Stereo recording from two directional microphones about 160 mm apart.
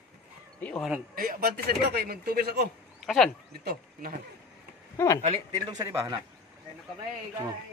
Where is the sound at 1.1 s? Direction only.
65° right (ahead or behind).